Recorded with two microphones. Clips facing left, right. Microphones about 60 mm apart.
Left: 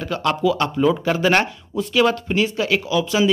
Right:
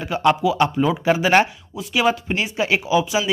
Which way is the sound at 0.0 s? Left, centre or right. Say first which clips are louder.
Right 2 dB; centre.